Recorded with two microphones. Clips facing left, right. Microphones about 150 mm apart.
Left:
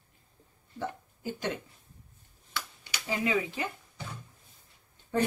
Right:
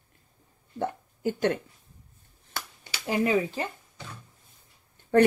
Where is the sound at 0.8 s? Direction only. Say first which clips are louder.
Right 7 dB; 55° right (ahead or behind).